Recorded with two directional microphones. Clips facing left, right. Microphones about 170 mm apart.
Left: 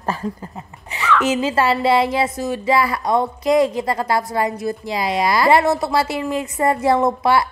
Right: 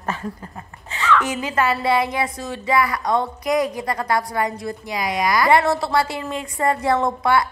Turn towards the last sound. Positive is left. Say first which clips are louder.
# left 2 dB
turn(degrees=25)  # may be behind; listen again after turning